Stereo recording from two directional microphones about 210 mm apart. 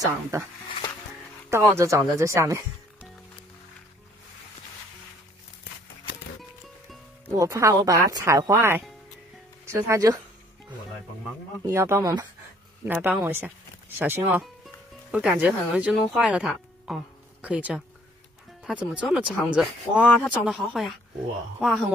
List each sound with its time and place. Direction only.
0.0 s speech: 15° right (ahead or behind)
1.5 s speech: 10° right (ahead or behind)
7.2 s speech: 15° right (ahead or behind)
11.6 s speech: 15° right (ahead or behind)